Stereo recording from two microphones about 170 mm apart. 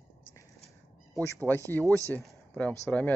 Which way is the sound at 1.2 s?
15° left (ahead or behind).